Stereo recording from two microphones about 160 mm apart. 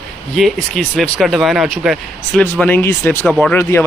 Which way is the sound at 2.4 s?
10° left (ahead or behind).